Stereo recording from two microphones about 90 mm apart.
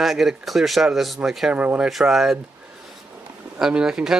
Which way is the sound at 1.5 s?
15° right (ahead or behind).